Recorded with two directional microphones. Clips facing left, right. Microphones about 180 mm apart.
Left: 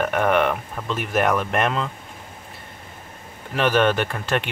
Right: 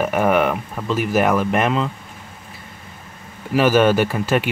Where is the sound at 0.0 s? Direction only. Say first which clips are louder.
Right 2 dB; 5° right (ahead or behind).